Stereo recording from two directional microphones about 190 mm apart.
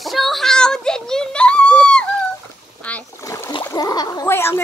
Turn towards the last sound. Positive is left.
turn(degrees=10)  # may be behind; listen again after turning